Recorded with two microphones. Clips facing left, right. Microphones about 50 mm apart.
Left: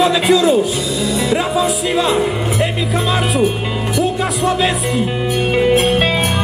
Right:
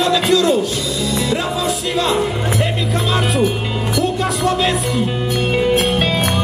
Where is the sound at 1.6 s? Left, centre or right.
Centre.